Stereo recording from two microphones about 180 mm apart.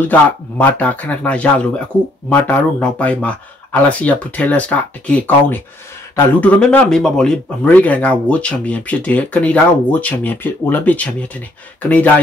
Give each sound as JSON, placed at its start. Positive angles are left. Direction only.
{"t": 0.0, "sound": "speech", "side_deg": 10}